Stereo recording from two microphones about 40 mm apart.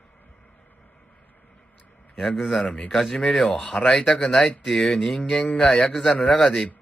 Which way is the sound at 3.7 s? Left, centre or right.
Centre.